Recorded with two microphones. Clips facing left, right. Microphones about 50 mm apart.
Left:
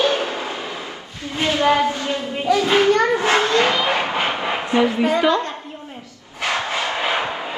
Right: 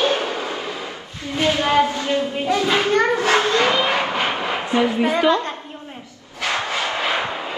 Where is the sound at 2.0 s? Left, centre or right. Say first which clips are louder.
Right 1 dB; right.